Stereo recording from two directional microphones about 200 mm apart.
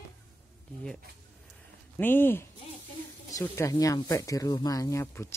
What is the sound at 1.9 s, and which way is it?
Speech, 10° left (ahead or behind).